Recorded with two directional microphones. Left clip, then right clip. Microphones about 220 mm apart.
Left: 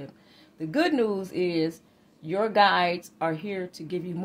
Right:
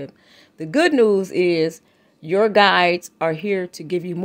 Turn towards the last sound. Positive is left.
turn(degrees=-50)  # may be behind; listen again after turning